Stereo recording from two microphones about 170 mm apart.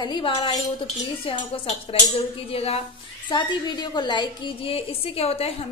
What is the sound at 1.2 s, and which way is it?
A woman's voice, 30° left (ahead or behind).